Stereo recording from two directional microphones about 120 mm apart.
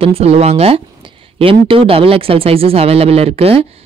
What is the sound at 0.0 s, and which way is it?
Speech, 55° right (ahead or behind).